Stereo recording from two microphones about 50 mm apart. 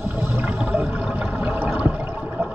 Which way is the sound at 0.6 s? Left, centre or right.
Centre.